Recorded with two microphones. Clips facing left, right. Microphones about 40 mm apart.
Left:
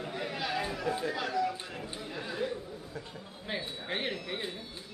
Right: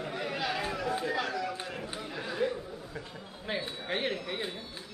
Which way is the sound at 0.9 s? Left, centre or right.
Centre.